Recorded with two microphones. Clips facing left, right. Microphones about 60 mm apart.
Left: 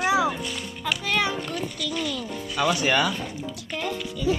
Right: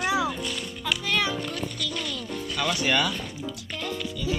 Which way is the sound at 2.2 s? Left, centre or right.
Left.